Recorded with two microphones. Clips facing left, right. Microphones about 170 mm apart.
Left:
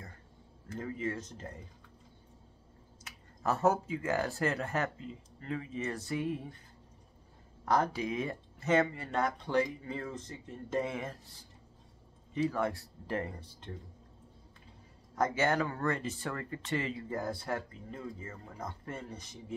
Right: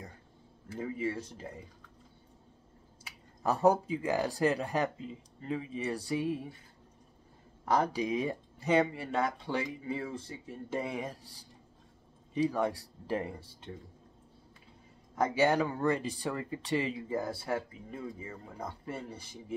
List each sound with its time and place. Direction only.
0.7 s speech: 10° right (ahead or behind)
3.0 s speech: 15° right (ahead or behind)
7.7 s speech: 15° right (ahead or behind)
15.1 s speech: 10° right (ahead or behind)